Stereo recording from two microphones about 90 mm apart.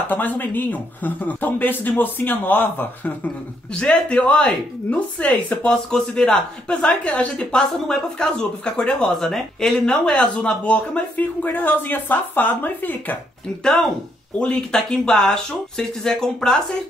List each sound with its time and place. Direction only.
0.1 s speech: 20° left (ahead or behind)
3.7 s speech: 10° left (ahead or behind)
13.7 s speech: 5° left (ahead or behind)